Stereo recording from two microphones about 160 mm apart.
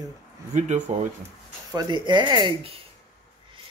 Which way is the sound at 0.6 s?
45° right (ahead or behind).